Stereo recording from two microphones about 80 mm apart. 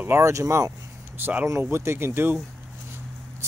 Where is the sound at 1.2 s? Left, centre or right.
Right.